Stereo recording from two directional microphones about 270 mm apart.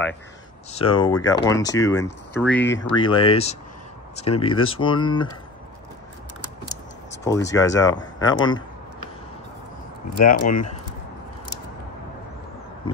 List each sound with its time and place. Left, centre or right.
0.7 s speech: centre
2.8 s speech: centre
7.1 s speech: centre
10.1 s speech: left